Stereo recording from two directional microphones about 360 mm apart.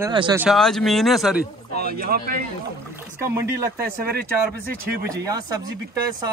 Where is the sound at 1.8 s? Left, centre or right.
Right.